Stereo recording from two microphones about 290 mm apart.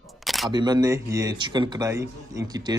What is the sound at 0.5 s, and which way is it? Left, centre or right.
Speech, centre.